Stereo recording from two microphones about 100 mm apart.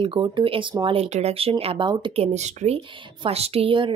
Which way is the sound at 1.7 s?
55° right (ahead or behind).